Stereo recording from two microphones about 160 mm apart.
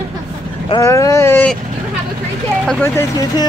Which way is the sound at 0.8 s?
20° left (ahead or behind).